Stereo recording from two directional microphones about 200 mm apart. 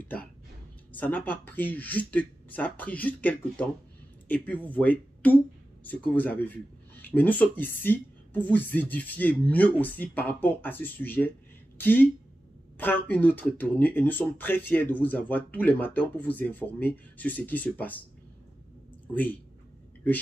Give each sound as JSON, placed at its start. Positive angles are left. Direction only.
{"t": 0.9, "sound": "speech", "side_deg": 10}
{"t": 19.1, "sound": "speech", "side_deg": 10}